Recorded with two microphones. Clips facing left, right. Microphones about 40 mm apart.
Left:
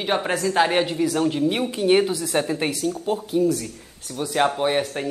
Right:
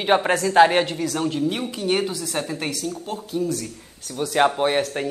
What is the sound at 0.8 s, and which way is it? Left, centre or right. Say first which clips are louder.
A woman's voice: left 3 dB; centre.